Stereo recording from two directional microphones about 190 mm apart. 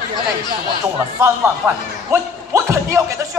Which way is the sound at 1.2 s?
15° right (ahead or behind).